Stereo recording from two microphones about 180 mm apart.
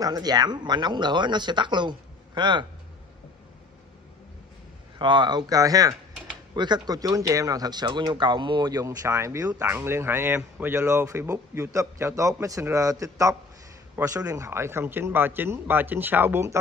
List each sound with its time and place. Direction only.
0.0 s speech: 20° right (ahead or behind)
4.9 s speech: 25° right (ahead or behind)